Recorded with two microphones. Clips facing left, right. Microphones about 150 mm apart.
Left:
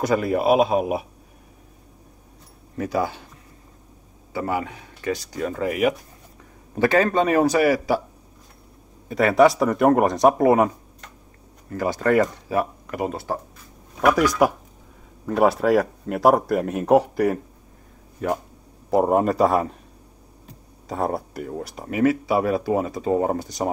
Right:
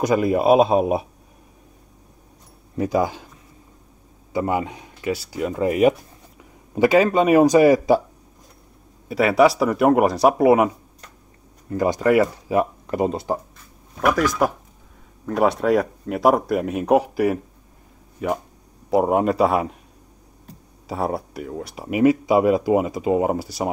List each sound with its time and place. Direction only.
0.0 s a man's voice: 15° right (ahead or behind)
2.8 s speech: 20° right (ahead or behind)
4.3 s speech: 20° right (ahead or behind)
5.1 s speech: 5° right (ahead or behind)
5.6 s a man's voice: 30° right (ahead or behind)
6.7 s speech: 15° right (ahead or behind)
9.1 s speech: centre (ahead or behind)
11.7 s speech: 20° right (ahead or behind)
12.8 s speech: 25° right (ahead or behind)
14.1 s speech: 10° left (ahead or behind)
20.8 s speech: 5° right (ahead or behind)
21.8 s speech: 15° right (ahead or behind)